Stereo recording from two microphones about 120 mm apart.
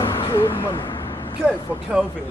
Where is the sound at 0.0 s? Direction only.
45° left (ahead or behind).